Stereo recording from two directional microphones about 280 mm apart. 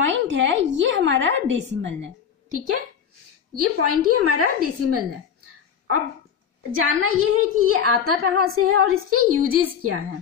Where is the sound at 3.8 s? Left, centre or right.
Right.